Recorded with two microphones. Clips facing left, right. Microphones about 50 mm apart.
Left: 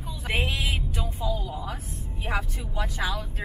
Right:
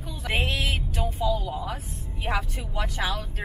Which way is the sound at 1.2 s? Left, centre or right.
Right.